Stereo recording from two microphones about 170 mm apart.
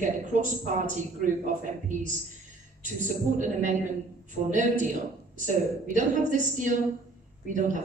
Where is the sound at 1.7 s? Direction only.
45° right (ahead or behind).